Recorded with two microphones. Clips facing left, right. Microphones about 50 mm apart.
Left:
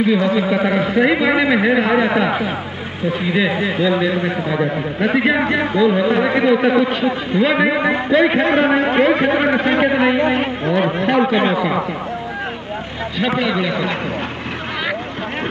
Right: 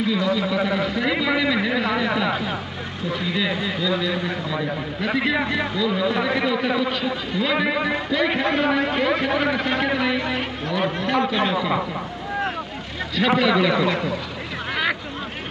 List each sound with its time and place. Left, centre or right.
0.1 s a man's voice: left
13.2 s a man's voice: centre
13.7 s speech: left